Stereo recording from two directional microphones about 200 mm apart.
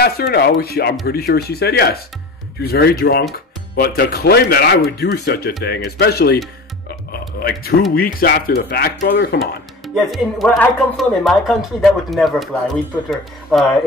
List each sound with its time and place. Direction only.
0.0 s speech: 50° left (ahead or behind)
7.1 s a sound: 50° left (ahead or behind)
7.9 s speech: 50° left (ahead or behind)
9.9 s speech: centre (ahead or behind)